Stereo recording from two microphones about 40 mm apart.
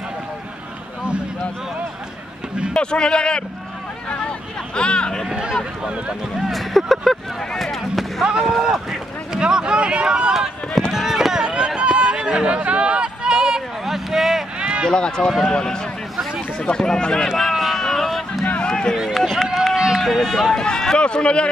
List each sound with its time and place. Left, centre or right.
2.7 s speech: left
6.3 s speech: centre
8.3 s speech: centre
10.9 s run: centre
11.4 s a sound: right
13.9 s a sound: centre
14.6 s run: right
14.9 s speech: centre
17.7 s a sound: centre
18.4 s run: left
19.1 s run: centre
20.0 s speech: centre; by 21.5 s left